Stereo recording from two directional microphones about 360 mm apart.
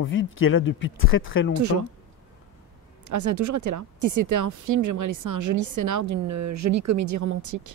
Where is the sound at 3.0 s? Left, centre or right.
Right.